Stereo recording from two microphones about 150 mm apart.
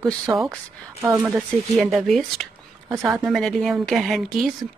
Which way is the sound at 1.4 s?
Centre (ahead or behind).